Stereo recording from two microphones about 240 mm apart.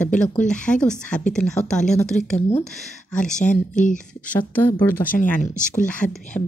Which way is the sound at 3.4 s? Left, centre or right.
Left.